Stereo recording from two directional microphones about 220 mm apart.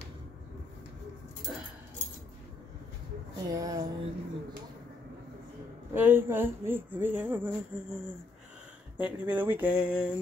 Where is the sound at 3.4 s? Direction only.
15° right (ahead or behind).